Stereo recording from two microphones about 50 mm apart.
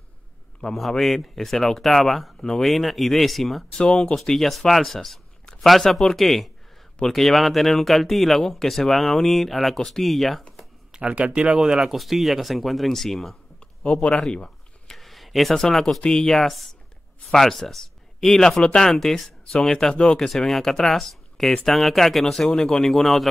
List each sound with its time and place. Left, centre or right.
0.6 s speech: centre
3.7 s speech: centre
10.9 s speech: right; by 13.4 s centre
13.8 s speech: left
14.9 s a sound: centre
16.0 s speech: centre
16.4 s speech: centre